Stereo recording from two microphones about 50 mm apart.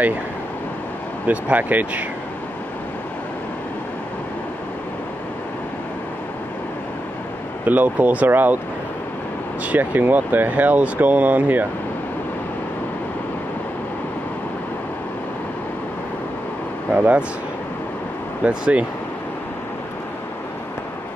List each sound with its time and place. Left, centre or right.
1.2 s speech: right
7.6 s speech: right
9.7 s speech: right
16.9 s speech: right
18.4 s speech: right